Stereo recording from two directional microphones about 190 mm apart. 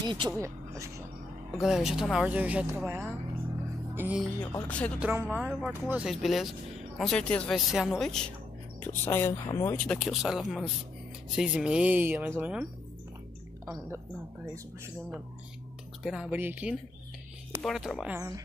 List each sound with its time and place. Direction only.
0.0 s speech: 25° right (ahead or behind)
1.6 s speech: 5° right (ahead or behind)
3.9 s music: 10° right (ahead or behind)
4.5 s speech: 10° left (ahead or behind)
5.0 s a woman's voice: 10° right (ahead or behind); by 9.8 s 15° left (ahead or behind)
9.8 s a woman's voice: centre (ahead or behind)
13.8 s speech: 15° right (ahead or behind)
16.0 s a woman's voice: centre (ahead or behind)